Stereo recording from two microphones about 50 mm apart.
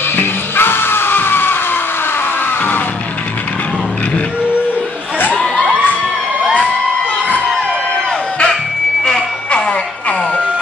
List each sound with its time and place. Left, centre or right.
0.1 s music: left
9.0 s music: centre